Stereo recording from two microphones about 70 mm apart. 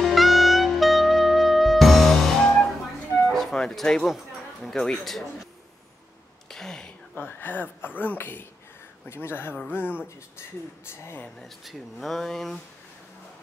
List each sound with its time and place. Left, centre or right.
0.0 s music: centre
4.1 s speech: centre
6.5 s speech: centre
7.2 s speech: left
11.3 s speech: centre